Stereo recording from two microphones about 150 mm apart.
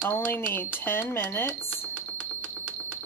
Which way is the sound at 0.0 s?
15° left (ahead or behind).